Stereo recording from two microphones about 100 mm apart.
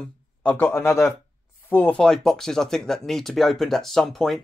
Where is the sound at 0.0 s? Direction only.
10° left (ahead or behind).